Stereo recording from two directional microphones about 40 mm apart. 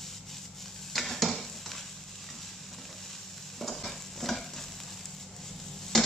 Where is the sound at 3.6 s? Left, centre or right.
Centre.